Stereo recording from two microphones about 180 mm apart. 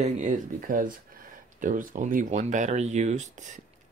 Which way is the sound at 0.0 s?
45° right (ahead or behind).